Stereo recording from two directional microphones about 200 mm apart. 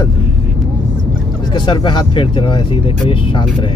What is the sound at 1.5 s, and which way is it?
Speech, 25° left (ahead or behind).